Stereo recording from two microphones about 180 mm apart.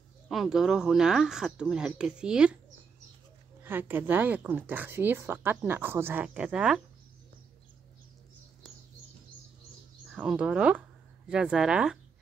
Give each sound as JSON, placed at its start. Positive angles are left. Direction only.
{"t": 0.3, "sound": "speech", "side_deg": 0}
{"t": 3.6, "sound": "speech", "side_deg": -10}
{"t": 10.1, "sound": "speech", "side_deg": -5}